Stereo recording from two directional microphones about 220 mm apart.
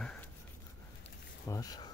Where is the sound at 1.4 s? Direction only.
15° left (ahead or behind).